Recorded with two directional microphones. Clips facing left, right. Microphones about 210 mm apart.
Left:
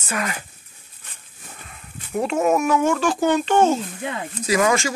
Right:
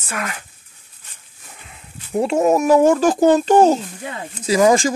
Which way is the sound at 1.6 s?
25° right (ahead or behind).